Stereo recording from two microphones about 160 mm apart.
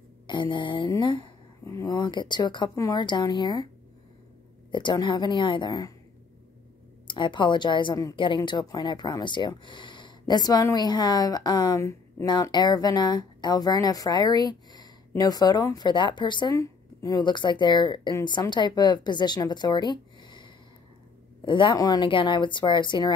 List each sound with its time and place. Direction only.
0.3 s a woman's voice: 30° left (ahead or behind)
4.6 s a woman's voice: 30° left (ahead or behind)
7.1 s a woman's voice: 30° left (ahead or behind)